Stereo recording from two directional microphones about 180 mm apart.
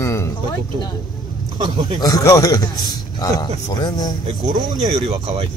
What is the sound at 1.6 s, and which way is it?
Speech, 25° right (ahead or behind).